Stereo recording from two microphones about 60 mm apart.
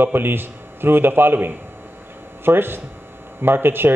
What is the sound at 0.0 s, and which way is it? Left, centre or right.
A man's voice, right.